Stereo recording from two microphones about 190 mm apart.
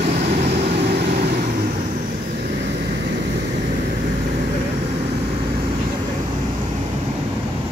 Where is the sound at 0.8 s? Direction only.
55° right (ahead or behind).